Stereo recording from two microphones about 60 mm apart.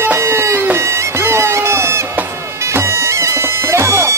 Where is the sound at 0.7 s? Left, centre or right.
Right.